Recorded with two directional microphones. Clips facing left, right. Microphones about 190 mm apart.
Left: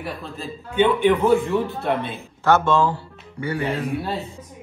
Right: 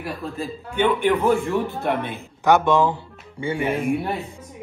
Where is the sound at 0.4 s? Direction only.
15° right (ahead or behind).